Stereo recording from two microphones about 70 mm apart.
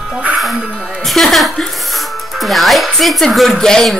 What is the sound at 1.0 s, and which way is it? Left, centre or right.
Speech, centre.